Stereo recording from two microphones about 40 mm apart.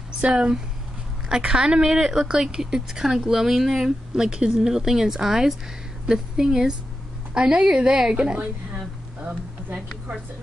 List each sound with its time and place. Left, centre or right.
0.2 s a woman's voice: right